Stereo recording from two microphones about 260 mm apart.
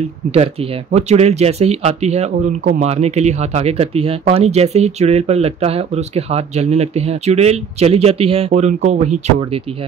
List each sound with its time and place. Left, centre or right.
0.9 s speech: right